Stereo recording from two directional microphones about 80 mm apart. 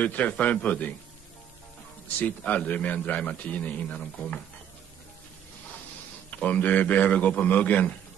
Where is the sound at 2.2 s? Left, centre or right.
Centre.